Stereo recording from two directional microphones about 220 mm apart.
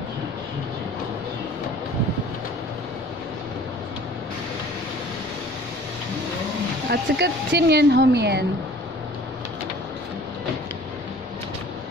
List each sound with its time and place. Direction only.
6.9 s speech: 50° right (ahead or behind)